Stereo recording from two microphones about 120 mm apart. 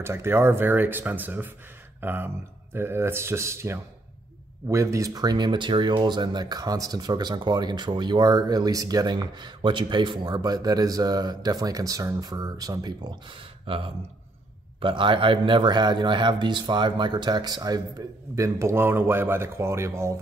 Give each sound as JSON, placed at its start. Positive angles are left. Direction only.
{"t": 0.0, "sound": "speech", "side_deg": -20}
{"t": 13.7, "sound": "speech", "side_deg": -50}